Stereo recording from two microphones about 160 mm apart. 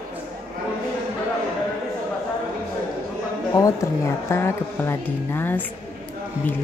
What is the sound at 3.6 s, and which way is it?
Speech, 20° left (ahead or behind).